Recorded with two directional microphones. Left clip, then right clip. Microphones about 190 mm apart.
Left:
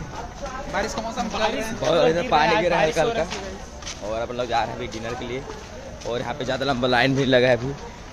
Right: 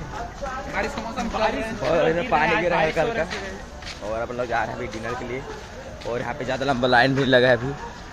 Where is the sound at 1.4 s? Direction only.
25° left (ahead or behind).